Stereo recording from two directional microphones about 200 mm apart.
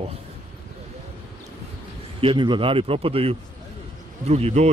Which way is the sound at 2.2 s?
25° right (ahead or behind).